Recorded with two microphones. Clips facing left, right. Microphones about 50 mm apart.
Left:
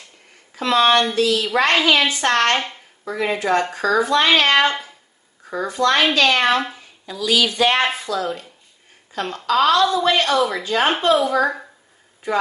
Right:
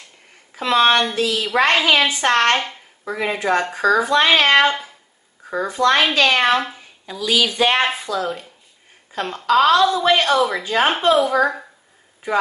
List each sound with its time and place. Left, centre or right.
0.6 s a woman's voice: centre
2.5 s a child's voice: centre
3.1 s a child's voice: centre
10.3 s a child's voice: centre